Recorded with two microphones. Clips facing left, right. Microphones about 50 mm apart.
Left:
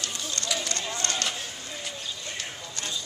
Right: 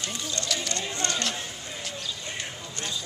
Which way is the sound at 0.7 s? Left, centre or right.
Right.